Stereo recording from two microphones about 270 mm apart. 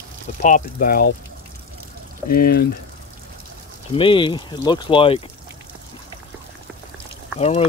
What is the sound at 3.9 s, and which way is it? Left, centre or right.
Speech, centre.